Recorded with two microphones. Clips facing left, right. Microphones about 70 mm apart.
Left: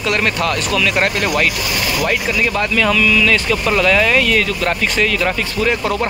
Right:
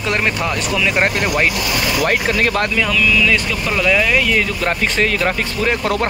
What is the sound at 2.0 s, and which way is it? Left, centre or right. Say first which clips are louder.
Speech: right 1 dB; right.